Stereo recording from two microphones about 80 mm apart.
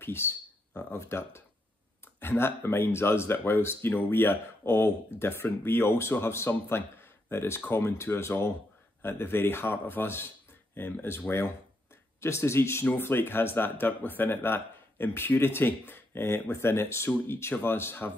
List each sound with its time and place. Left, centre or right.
0.0 s speech: left